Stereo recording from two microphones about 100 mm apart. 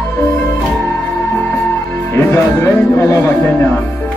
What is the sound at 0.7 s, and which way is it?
Music, 20° left (ahead or behind).